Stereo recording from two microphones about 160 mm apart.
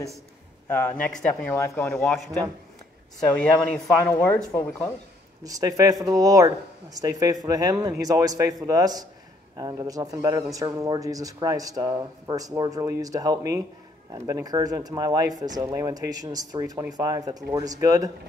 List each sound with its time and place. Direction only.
0.7 s speech: 10° left (ahead or behind)
1.9 s speech: 5° left (ahead or behind)
5.4 s speech: 20° right (ahead or behind)